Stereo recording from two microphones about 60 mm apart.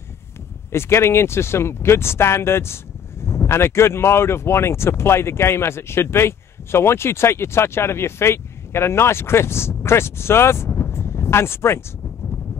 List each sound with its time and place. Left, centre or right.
0.7 s speech: left